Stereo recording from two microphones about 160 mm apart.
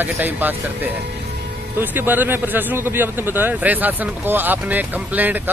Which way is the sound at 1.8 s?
10° right (ahead or behind).